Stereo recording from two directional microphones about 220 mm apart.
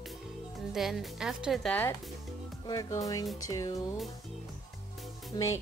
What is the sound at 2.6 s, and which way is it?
Music, 15° left (ahead or behind).